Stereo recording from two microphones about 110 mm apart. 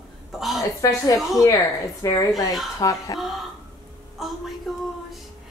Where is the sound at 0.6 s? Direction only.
30° left (ahead or behind).